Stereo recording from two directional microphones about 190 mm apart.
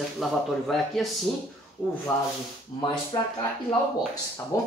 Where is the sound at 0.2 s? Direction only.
Centre (ahead or behind).